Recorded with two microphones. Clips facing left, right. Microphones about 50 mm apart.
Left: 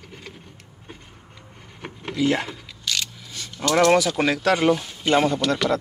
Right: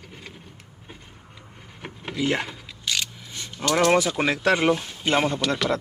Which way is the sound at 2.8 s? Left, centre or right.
Centre.